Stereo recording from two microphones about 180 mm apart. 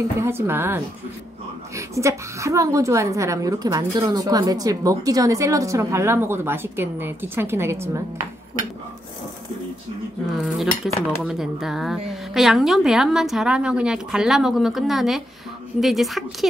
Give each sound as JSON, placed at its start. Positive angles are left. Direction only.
{"t": 0.2, "sound": "a woman's voice", "side_deg": -15}
{"t": 1.8, "sound": "a woman's voice", "side_deg": -15}
{"t": 10.8, "sound": "speech", "side_deg": 0}